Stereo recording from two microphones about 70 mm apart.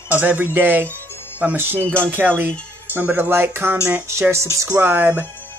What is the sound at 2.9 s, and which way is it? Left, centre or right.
Speech, right.